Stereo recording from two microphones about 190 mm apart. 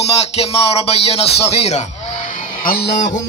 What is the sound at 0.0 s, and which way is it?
Music, 35° left (ahead or behind).